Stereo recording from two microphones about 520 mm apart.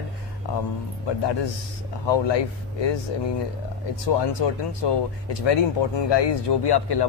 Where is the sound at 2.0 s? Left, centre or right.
Left.